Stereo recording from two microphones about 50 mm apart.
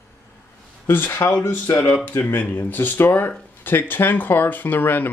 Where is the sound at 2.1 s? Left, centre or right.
Left.